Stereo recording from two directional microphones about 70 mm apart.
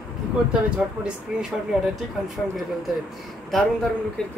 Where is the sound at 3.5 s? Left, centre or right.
Centre.